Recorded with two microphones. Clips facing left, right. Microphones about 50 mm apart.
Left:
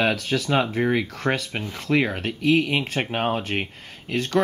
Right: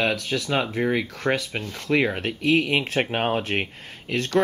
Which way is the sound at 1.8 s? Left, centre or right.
Centre.